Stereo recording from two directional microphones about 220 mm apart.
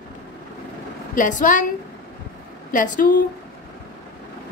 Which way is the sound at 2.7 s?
40° left (ahead or behind).